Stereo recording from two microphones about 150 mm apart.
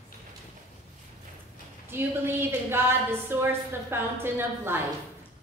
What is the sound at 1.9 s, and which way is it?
A woman's voice, 15° right (ahead or behind).